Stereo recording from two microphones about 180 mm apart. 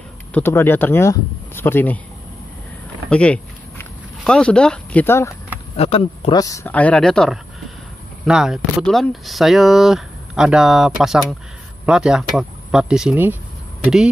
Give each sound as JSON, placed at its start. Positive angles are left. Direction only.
{"t": 0.3, "sound": "speech", "side_deg": 10}
{"t": 3.1, "sound": "a sound", "side_deg": 5}
{"t": 5.8, "sound": "speech", "side_deg": 35}
{"t": 6.3, "sound": "speech", "side_deg": 20}
{"t": 6.7, "sound": "speech", "side_deg": 10}